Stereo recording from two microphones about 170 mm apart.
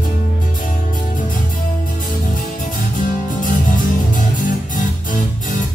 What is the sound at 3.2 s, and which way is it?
Music, 50° left (ahead or behind).